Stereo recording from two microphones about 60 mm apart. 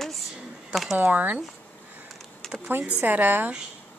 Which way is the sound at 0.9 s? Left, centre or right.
Right.